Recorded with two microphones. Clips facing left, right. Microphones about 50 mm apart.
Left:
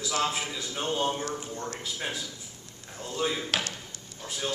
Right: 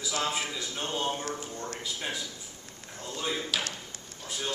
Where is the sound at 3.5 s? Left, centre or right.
Left.